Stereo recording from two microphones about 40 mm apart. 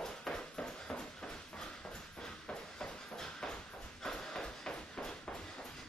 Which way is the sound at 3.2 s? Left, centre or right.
Centre.